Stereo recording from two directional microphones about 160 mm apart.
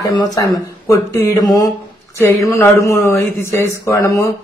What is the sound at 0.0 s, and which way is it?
Speech, 25° left (ahead or behind).